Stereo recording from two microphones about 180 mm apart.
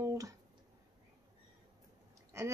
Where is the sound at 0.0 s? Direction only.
20° right (ahead or behind).